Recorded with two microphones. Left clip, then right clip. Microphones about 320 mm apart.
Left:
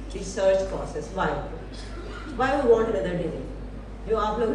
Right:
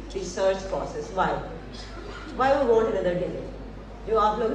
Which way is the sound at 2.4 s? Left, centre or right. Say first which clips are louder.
Right 3 dB; centre.